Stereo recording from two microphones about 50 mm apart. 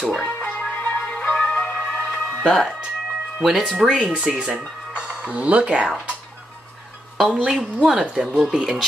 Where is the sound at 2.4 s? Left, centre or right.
Centre.